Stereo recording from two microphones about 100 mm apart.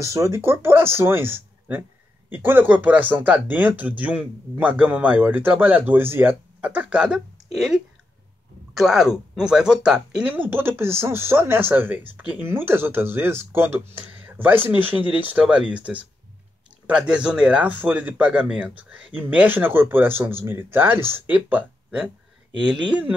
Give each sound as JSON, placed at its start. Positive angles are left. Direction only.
{"t": 0.0, "sound": "speech", "side_deg": -30}